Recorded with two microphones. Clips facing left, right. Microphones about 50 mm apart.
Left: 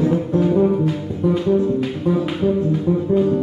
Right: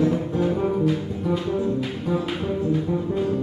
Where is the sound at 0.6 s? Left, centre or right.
Centre.